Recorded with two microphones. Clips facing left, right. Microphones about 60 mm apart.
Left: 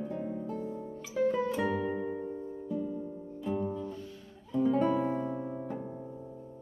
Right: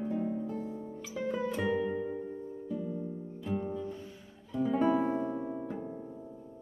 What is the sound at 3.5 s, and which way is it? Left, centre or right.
Music, right.